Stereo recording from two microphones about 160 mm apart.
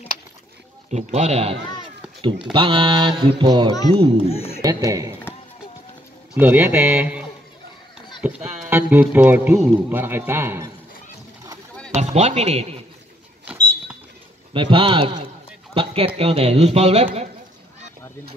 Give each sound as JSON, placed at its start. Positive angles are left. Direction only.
{"t": 0.8, "sound": "speech", "side_deg": -45}
{"t": 4.3, "sound": "speech", "side_deg": 40}
{"t": 4.6, "sound": "a man's voice", "side_deg": -20}
{"t": 6.3, "sound": "a man's voice", "side_deg": -10}
{"t": 11.9, "sound": "speech", "side_deg": -45}
{"t": 14.5, "sound": "speech", "side_deg": -30}